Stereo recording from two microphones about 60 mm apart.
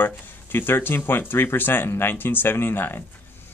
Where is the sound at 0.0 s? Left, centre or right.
Left.